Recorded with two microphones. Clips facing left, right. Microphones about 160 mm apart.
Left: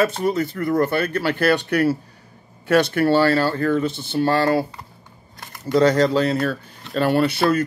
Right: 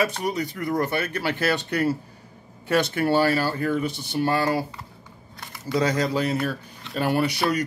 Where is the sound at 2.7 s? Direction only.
20° right (ahead or behind).